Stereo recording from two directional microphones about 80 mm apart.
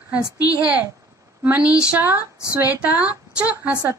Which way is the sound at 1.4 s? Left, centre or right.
Centre.